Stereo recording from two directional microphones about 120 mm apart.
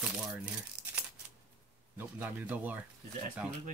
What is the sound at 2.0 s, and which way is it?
Speech, 15° right (ahead or behind).